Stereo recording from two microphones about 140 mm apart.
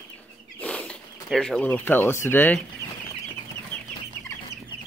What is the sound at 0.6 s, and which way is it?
Speech, 10° left (ahead or behind).